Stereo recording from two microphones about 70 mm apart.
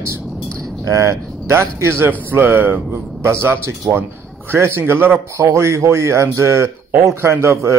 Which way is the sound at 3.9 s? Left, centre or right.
Right.